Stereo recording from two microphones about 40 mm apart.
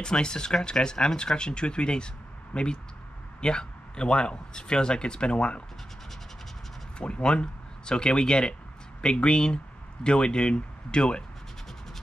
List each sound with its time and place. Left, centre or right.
0.0 s speech: centre
7.0 s speech: left